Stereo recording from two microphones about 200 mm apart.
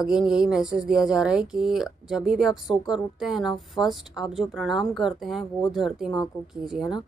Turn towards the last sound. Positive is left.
turn(degrees=0)  # may be behind; listen again after turning